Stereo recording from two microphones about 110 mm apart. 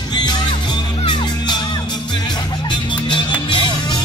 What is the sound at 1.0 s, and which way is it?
Music, 45° left (ahead or behind).